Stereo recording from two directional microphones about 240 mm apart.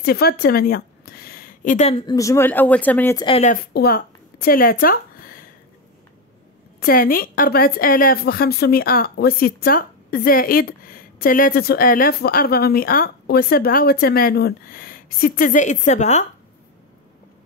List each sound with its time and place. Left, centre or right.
0.0 s speech: left; by 3.3 s centre
3.3 s speech: left
3.7 s a sound: left
6.8 s a woman's voice: left